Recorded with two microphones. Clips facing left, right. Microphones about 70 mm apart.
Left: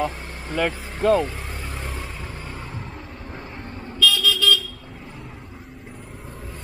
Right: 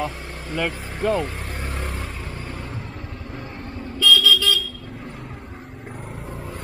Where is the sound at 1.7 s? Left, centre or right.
Centre.